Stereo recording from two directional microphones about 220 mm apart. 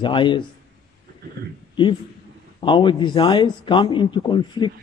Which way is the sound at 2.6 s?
20° left (ahead or behind).